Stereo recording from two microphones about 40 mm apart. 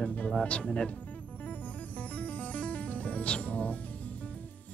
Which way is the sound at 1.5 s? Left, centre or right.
Left.